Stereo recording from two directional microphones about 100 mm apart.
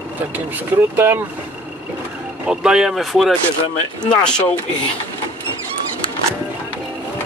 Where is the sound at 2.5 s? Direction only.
5° right (ahead or behind).